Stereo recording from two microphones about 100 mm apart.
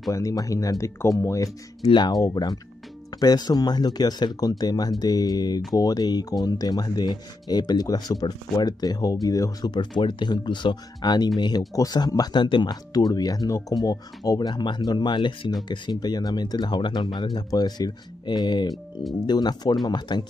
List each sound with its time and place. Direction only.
0.1 s speech: 35° left (ahead or behind)
1.9 s speech: 50° left (ahead or behind)